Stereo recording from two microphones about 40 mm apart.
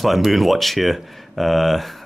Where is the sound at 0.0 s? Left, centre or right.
Centre.